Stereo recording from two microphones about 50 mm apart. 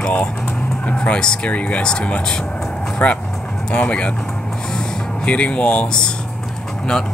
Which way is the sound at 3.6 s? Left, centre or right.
Left.